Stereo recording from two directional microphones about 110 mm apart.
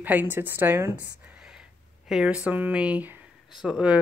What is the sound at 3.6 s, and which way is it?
Speech, 5° right (ahead or behind).